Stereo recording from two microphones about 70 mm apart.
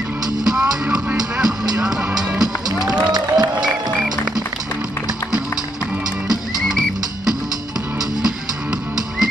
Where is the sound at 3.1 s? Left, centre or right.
Right.